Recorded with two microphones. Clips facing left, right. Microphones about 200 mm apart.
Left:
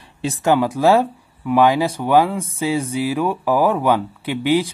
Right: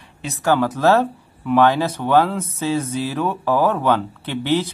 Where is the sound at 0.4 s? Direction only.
15° left (ahead or behind).